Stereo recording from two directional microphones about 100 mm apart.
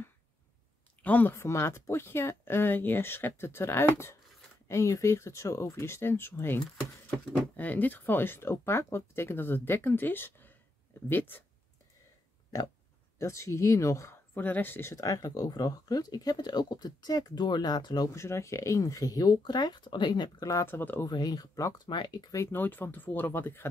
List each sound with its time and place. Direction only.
1.0 s speech: 20° left (ahead or behind)
13.2 s speech: 30° left (ahead or behind)
14.3 s speech: 20° left (ahead or behind); by 18.1 s 45° left (ahead or behind)
18.1 s speech: 30° left (ahead or behind); by 20.4 s 50° left (ahead or behind)
20.6 s speech: 20° left (ahead or behind)
21.1 s speech: 40° left (ahead or behind)
21.8 s speech: 50° left (ahead or behind)
22.3 s speech: 25° left (ahead or behind)